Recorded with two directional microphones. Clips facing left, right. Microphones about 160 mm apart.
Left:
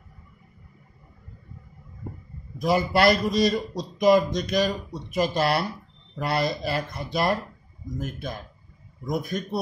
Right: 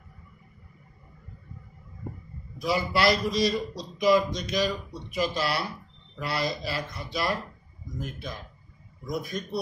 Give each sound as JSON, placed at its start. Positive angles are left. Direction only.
{"t": 2.6, "sound": "a man's voice", "side_deg": 50}